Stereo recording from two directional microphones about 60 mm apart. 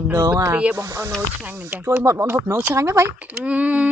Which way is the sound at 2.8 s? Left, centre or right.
Right.